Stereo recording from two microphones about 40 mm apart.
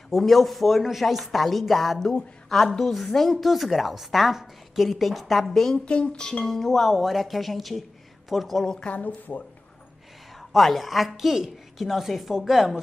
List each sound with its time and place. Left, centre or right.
0.2 s a woman's voice: centre
5.9 s speech: left
6.4 s speech: centre
6.9 s a woman's voice: centre
8.6 s speech: left
8.9 s speech: left
10.5 s a woman's voice: centre